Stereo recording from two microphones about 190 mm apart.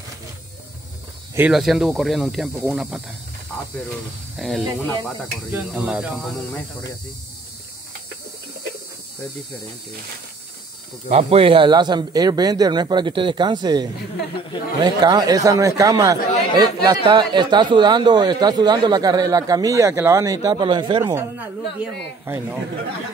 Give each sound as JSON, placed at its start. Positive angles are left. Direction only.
{"t": 1.3, "sound": "speech", "side_deg": -5}
{"t": 4.4, "sound": "speech", "side_deg": 0}
{"t": 11.1, "sound": "speech", "side_deg": -30}
{"t": 21.1, "sound": "speech", "side_deg": -15}